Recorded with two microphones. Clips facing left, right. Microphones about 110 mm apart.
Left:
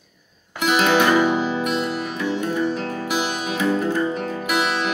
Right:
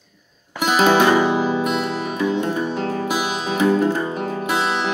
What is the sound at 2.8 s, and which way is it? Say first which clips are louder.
Music: right 2 dB; 35° right (ahead or behind).